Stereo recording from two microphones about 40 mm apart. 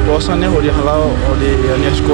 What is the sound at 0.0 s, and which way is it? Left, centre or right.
Speech, centre.